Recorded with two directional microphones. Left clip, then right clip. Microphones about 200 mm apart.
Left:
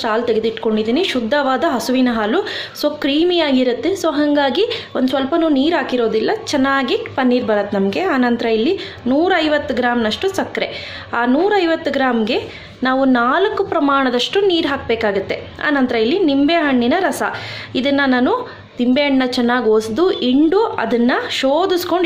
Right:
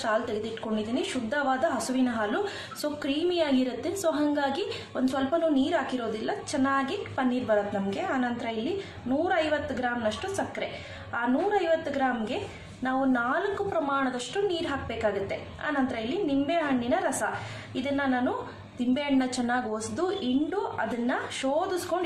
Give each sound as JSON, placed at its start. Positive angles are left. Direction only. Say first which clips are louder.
{"t": 0.0, "sound": "a woman's voice", "louder": "left 12 dB", "side_deg": 35}
{"t": 18.9, "sound": "a woman's voice", "louder": "left 13 dB", "side_deg": 35}
{"t": 20.4, "sound": "a woman's voice", "louder": "left 15 dB", "side_deg": 45}